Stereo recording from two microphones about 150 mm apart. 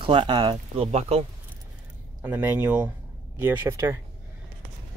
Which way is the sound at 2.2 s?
10° right (ahead or behind).